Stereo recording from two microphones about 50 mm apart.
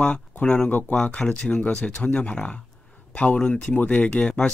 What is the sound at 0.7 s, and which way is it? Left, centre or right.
Speech, left.